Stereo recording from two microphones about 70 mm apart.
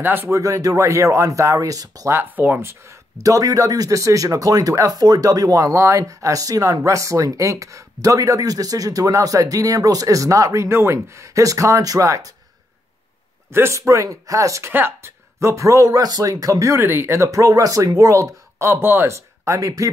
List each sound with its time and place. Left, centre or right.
0.0 s speech: right
0.3 s speech: right
2.3 s speech: right
3.2 s speech: right
13.5 s speech: right
14.7 s speech: right